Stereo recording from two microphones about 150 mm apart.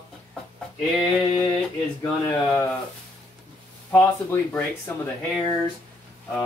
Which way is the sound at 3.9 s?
15° left (ahead or behind).